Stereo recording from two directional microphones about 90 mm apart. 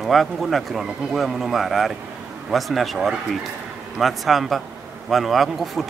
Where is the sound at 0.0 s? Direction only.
Centre (ahead or behind).